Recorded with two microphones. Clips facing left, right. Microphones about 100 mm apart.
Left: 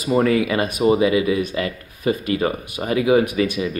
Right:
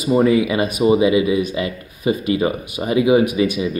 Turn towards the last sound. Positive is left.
turn(degrees=-10)  # may be behind; listen again after turning